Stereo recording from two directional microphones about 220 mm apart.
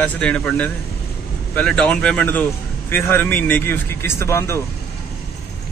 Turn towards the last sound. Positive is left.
turn(degrees=10)  # may be behind; listen again after turning